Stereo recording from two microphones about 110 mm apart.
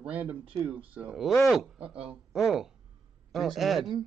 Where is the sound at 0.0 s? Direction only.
10° right (ahead or behind).